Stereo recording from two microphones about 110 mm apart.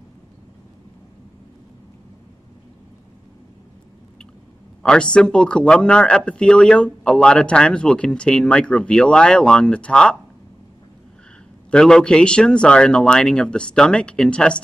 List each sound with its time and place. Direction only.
4.8 s speech: 10° left (ahead or behind)
11.7 s speech: 5° left (ahead or behind)